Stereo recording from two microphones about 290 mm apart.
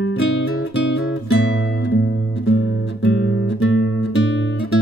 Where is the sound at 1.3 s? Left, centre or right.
Left.